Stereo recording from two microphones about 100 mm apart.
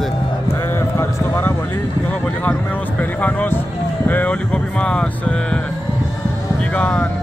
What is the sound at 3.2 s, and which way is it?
Speech, 15° left (ahead or behind).